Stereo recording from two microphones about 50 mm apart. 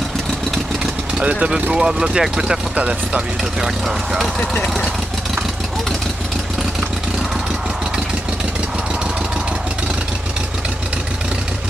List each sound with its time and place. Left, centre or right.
1.2 s speech: right
1.5 s speech: centre
2.7 s speech: right
3.8 s speech: centre